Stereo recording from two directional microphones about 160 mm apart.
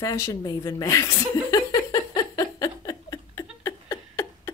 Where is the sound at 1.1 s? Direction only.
20° left (ahead or behind).